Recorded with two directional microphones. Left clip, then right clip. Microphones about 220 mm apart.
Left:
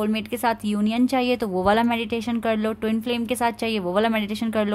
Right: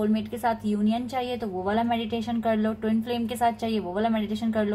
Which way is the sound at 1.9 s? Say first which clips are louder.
Left 3 dB; 80° left.